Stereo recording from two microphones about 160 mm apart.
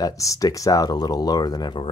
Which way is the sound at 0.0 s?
20° left (ahead or behind).